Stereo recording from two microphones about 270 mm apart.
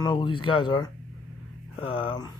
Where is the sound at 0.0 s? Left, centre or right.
Centre.